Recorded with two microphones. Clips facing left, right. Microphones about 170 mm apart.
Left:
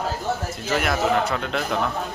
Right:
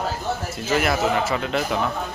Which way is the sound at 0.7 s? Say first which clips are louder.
Right 1 dB; centre (ahead or behind).